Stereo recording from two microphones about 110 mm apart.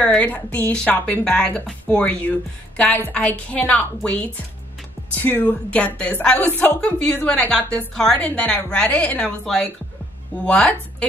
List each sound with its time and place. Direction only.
0.0 s speech: 15° left (ahead or behind)